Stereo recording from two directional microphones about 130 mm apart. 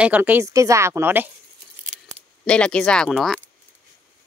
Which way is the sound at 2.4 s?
10° left (ahead or behind).